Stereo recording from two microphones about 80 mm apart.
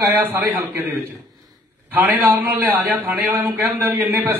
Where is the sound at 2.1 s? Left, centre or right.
Right.